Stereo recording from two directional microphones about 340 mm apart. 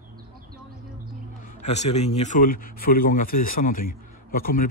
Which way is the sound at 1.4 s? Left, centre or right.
Left.